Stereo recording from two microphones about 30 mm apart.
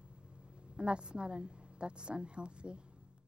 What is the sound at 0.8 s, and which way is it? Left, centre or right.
Speech, right.